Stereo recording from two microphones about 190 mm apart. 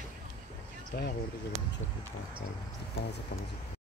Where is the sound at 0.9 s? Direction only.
55° left (ahead or behind).